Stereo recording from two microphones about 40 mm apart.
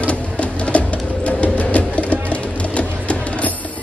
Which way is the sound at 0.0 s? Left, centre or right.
Left.